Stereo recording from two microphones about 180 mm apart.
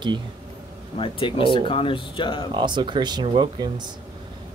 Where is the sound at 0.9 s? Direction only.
30° left (ahead or behind).